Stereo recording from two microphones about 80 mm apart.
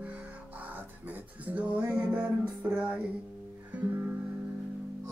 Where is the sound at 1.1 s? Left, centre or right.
Centre.